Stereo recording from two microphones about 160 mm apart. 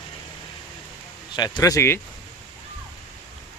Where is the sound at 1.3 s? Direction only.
25° left (ahead or behind).